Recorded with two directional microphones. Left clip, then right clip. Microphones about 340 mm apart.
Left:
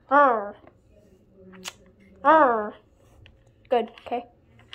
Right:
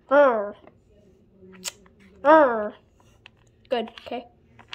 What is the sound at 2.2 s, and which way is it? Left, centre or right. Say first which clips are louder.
A woman's voice: right 1 dB; centre.